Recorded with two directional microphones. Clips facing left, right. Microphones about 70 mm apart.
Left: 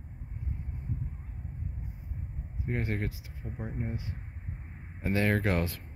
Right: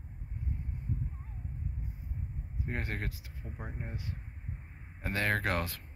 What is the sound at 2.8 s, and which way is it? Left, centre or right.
Speech, centre.